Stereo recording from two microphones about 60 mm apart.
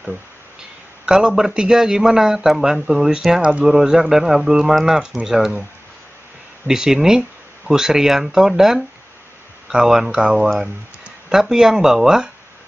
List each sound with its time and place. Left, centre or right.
1.0 s speech: centre
4.9 s speech: centre
5.2 s speech: centre
6.7 s speech: centre